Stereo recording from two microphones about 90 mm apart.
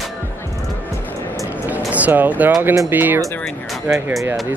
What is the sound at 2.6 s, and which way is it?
Speech, 30° right (ahead or behind).